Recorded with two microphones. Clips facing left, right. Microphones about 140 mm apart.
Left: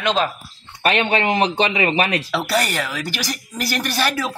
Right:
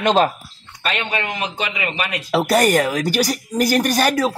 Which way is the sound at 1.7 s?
30° left (ahead or behind).